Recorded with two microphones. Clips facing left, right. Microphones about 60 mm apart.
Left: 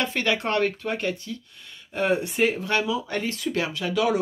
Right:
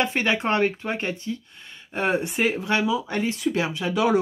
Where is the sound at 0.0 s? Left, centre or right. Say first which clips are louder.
Right 2 dB; right.